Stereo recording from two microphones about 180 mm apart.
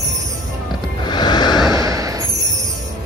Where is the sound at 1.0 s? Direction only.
25° left (ahead or behind).